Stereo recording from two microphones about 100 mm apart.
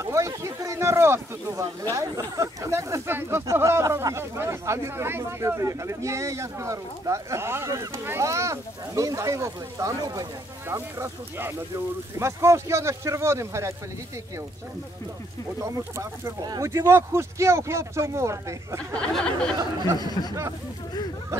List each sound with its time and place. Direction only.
0.0 s a sound: 30° right (ahead or behind)
2.0 s speech: 35° right (ahead or behind)
10.7 s speech: 25° right (ahead or behind)
15.6 s speech: 30° right (ahead or behind)
18.9 s speech: 10° left (ahead or behind)
20.0 s speech: 40° left (ahead or behind)